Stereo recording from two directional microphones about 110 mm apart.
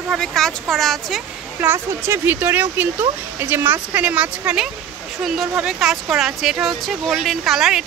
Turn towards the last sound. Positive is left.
turn(degrees=-5)  # may be behind; listen again after turning